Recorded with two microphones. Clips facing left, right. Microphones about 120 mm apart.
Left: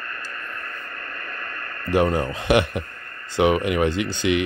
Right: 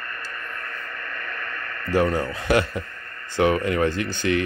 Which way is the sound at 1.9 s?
20° left (ahead or behind).